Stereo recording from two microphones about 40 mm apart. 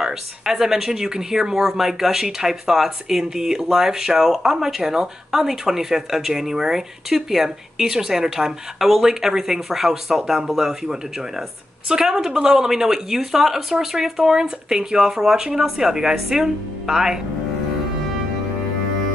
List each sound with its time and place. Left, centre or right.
0.0 s speech: centre